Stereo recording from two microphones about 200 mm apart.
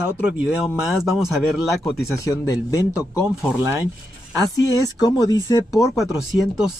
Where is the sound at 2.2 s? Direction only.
15° left (ahead or behind).